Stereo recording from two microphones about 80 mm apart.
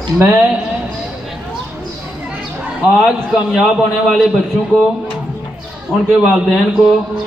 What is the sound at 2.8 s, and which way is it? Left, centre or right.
A man's voice, centre.